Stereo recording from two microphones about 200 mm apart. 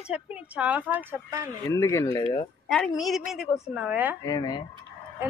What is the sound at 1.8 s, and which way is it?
Speech, 15° left (ahead or behind).